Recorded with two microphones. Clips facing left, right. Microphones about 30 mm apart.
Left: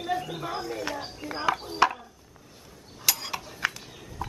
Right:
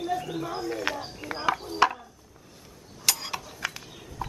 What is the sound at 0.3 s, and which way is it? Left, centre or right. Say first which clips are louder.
Speech: right 1 dB; centre.